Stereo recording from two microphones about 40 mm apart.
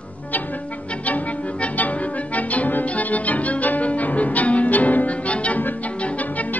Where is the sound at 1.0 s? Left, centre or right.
Left.